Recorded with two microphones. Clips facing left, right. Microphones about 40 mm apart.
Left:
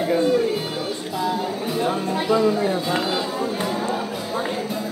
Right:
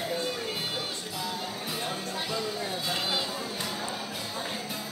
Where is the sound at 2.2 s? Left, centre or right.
Left.